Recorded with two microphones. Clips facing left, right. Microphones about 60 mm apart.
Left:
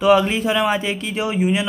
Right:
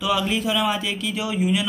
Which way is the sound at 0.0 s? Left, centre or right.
Left.